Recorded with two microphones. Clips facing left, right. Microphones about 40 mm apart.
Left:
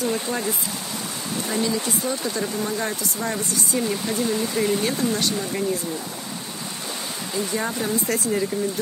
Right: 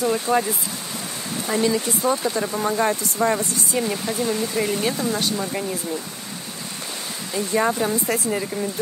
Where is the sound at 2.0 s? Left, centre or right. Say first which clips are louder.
Right 4 dB; right.